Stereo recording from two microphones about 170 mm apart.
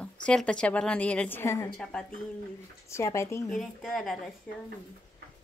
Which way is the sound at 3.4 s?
5° left (ahead or behind).